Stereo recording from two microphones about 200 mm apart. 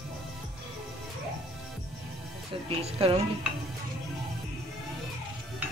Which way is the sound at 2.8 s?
30° right (ahead or behind).